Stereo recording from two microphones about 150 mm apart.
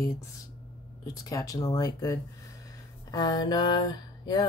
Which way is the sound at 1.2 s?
25° left (ahead or behind).